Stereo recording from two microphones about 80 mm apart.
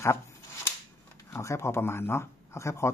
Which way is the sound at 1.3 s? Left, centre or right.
Left.